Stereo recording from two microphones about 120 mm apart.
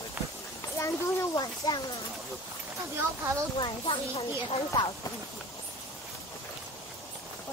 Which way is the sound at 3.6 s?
45° left (ahead or behind).